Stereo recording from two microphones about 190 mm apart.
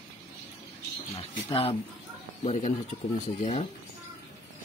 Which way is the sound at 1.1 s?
30° left (ahead or behind).